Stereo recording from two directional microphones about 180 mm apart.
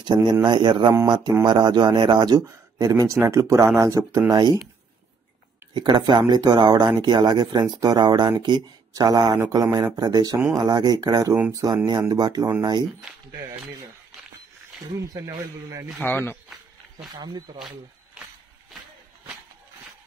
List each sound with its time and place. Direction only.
0.0 s speech: 25° right (ahead or behind)
5.8 s speech: 25° right (ahead or behind)
15.0 s speech: 20° right (ahead or behind)
16.0 s speech: 10° left (ahead or behind)
17.1 s speech: 25° right (ahead or behind)